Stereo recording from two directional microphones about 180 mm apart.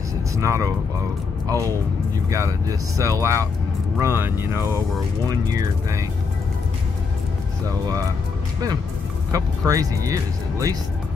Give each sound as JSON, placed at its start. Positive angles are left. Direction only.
{"t": 0.4, "sound": "speech", "side_deg": -15}
{"t": 9.3, "sound": "speech", "side_deg": -20}